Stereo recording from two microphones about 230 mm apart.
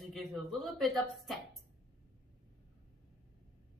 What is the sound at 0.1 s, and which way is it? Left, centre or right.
Speech, centre.